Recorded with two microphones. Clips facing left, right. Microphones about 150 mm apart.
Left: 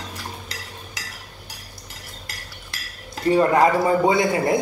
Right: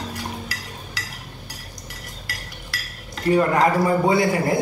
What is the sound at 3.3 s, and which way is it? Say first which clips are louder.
Speech: left 1 dB; 25° left (ahead or behind).